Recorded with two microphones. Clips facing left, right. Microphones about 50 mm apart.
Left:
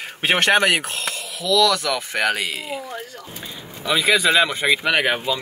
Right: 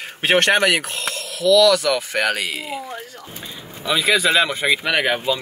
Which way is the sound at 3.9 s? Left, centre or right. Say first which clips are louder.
Even; centre.